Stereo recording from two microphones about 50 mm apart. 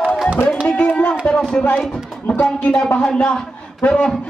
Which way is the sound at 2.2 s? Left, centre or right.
Left.